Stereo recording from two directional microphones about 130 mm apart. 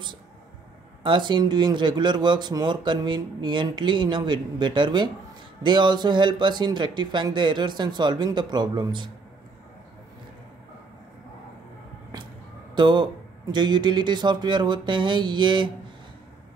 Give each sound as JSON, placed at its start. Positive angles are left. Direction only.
{"t": 1.0, "sound": "speech", "side_deg": -35}
{"t": 12.7, "sound": "speech", "side_deg": -35}